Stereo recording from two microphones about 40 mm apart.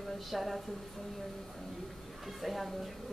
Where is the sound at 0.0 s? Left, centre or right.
Centre.